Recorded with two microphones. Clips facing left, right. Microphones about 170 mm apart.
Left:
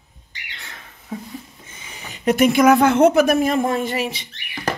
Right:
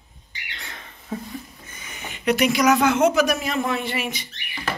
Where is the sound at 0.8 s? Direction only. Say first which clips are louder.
Even; 5° left (ahead or behind).